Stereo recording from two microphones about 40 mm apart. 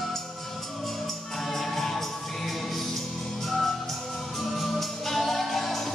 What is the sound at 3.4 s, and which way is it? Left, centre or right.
Music, centre.